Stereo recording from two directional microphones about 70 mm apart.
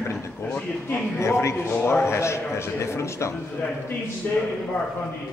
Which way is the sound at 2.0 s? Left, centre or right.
Left.